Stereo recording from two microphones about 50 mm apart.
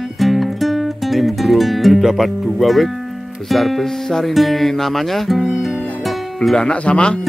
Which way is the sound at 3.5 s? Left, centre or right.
Centre.